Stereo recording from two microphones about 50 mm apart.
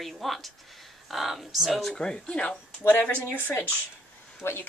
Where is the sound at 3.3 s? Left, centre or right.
Left.